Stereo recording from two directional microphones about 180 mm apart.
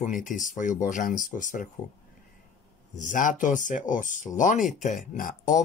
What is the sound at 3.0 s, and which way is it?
Speech, 45° left (ahead or behind).